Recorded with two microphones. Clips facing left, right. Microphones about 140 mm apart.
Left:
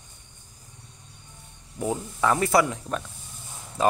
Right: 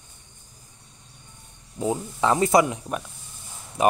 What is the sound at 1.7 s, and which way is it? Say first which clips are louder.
Speech: right 2 dB; 20° right (ahead or behind).